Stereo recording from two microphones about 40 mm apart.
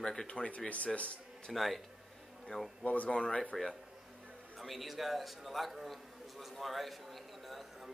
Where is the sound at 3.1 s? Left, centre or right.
Left.